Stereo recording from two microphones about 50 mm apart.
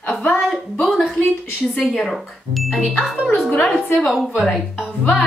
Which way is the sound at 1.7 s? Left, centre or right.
Centre.